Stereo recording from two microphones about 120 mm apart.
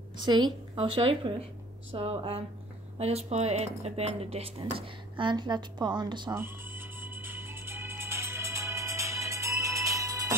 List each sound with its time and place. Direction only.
0.2 s a woman's voice: 40° right (ahead or behind)
0.7 s speech: 50° right (ahead or behind)
6.3 s music: 20° right (ahead or behind)